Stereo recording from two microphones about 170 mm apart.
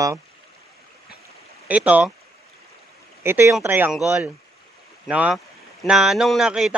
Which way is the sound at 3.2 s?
15° right (ahead or behind).